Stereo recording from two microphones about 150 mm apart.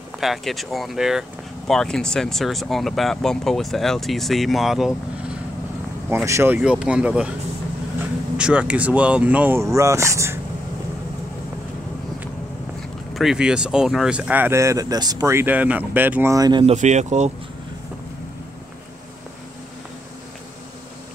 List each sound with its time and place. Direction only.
0.2 s speech: centre (ahead or behind)
6.0 s speech: 15° right (ahead or behind)
8.4 s speech: 5° right (ahead or behind)
13.1 s speech: centre (ahead or behind); by 16.6 s 25° right (ahead or behind)
16.6 s speech: 50° right (ahead or behind)